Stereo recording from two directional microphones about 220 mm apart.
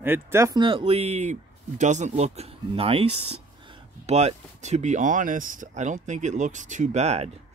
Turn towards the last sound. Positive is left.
turn(degrees=-30)  # may be behind; listen again after turning